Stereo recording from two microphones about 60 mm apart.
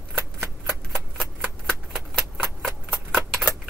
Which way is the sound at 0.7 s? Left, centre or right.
Centre.